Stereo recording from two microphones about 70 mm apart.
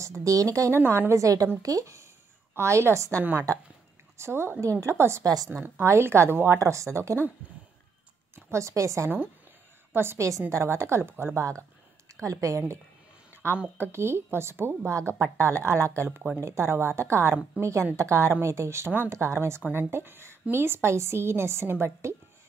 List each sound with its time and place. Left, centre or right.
0.0 s speech: right
0.7 s speech: right
2.5 s speech: right
4.2 s a woman's voice: right
5.2 s speech: right
5.5 s a woman's voice: right
8.5 s speech: right
9.9 s a woman's voice: right
19.6 s a woman's voice: right